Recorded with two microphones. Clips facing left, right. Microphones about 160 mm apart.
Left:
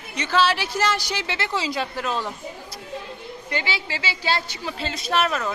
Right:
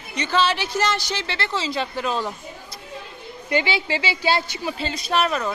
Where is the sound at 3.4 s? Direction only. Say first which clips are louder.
Right 7 dB; 20° right (ahead or behind).